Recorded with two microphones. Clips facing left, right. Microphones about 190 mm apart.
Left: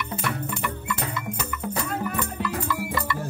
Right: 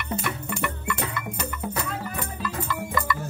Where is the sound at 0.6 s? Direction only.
60° right (ahead or behind).